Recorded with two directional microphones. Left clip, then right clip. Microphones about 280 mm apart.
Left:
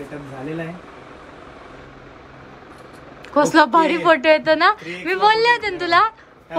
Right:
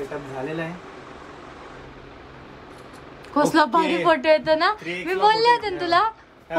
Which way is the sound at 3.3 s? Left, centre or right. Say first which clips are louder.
Left 4 dB; centre.